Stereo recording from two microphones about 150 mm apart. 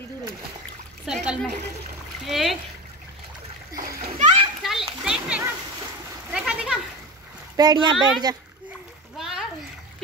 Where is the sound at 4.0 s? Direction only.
45° right (ahead or behind).